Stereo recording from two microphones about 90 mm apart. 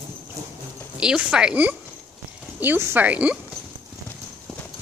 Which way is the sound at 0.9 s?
10° right (ahead or behind).